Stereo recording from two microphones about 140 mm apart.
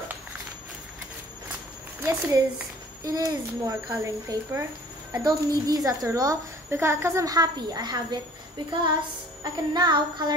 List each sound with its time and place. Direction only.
2.0 s a woman's voice: 20° right (ahead or behind)
9.4 s music: 30° right (ahead or behind)